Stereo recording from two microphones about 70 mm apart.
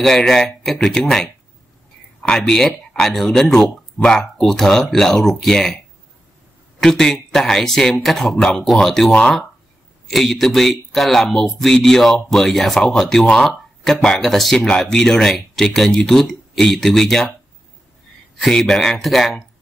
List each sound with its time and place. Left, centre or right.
0.0 s speech: centre
6.8 s speech: centre
18.4 s speech: centre